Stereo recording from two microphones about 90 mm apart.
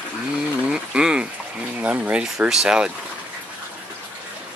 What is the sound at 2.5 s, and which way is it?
Speech, 5° right (ahead or behind).